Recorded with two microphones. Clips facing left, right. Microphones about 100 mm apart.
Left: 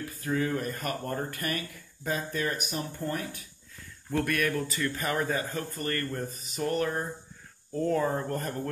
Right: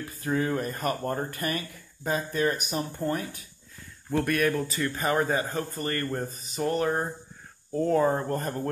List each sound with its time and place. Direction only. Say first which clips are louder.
0.2 s speech: right 2 dB; 30° right (ahead or behind)
4.2 s speech: right 3 dB; 30° right (ahead or behind)
7.7 s speech: right 4 dB; 25° right (ahead or behind)